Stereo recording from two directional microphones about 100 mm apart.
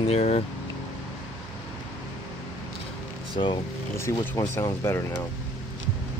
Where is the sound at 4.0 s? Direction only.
30° left (ahead or behind).